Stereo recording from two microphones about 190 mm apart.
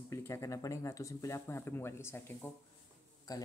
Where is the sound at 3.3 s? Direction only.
20° left (ahead or behind).